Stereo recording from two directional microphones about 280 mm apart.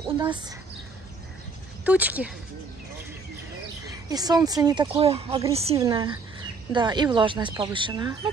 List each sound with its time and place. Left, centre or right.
0.0 s a woman's voice: centre
1.9 s speech: centre
4.1 s a woman's voice: centre